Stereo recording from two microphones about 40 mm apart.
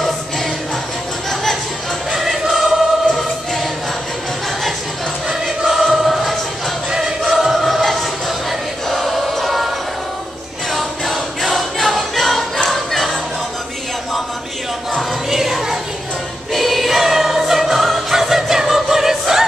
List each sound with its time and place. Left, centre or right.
2.1 s choir: centre
5.7 s choir: centre
6.9 s choir: centre
7.5 s choir: centre
8.8 s music: centre
10.7 s choir: centre
15.2 s a sound: centre
16.5 s music: centre